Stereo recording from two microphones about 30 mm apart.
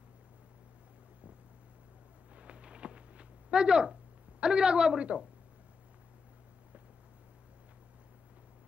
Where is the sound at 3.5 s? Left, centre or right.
Right.